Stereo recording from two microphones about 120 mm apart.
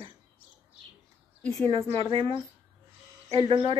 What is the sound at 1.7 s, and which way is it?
A woman's voice, 55° right (ahead or behind).